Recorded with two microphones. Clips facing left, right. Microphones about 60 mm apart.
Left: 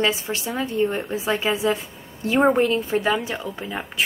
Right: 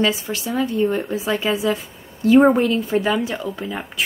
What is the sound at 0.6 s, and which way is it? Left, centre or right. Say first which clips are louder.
A woman's voice: right 4 dB; centre.